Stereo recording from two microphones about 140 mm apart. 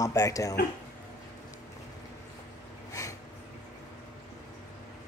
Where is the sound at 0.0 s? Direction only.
25° left (ahead or behind).